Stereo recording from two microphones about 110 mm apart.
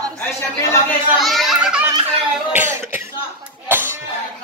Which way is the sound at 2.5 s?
20° right (ahead or behind).